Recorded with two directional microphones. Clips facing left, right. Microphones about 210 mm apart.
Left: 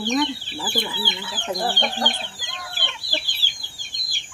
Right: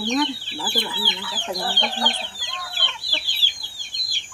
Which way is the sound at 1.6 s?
50° left (ahead or behind).